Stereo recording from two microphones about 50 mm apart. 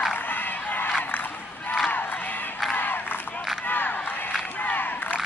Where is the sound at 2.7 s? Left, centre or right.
Left.